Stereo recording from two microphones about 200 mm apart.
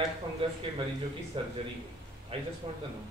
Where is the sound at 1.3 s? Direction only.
25° right (ahead or behind).